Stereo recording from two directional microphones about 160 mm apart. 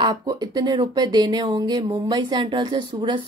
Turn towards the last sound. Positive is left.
turn(degrees=-30)  # may be behind; listen again after turning